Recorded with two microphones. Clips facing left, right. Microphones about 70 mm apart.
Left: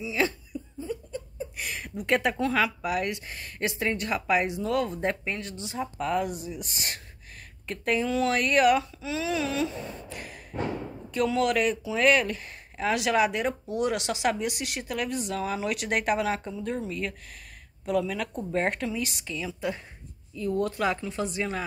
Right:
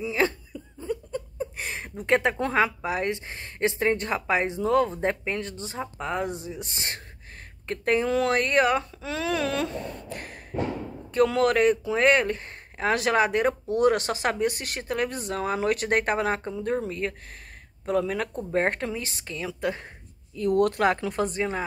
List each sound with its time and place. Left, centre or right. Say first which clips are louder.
0.0 s cough: right 3 dB; right
0.7 s a sound: right 5 dB; right
1.6 s a sound: right 1 dB; right
2.3 s a man's voice: right 2 dB; right
5.9 s a man's voice: left 1 dB; right
9.0 s a sound: right 2 dB; right
11.2 s a man's voice: right 3 dB; right
20.3 s speech: right 5 dB; right
21.4 s speech: right 3 dB; right